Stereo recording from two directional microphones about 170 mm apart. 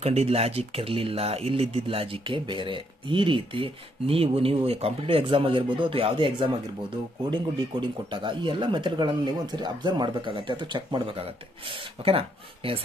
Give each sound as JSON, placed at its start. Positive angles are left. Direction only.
{"t": 0.0, "sound": "speech", "side_deg": -35}
{"t": 8.1, "sound": "speech", "side_deg": -25}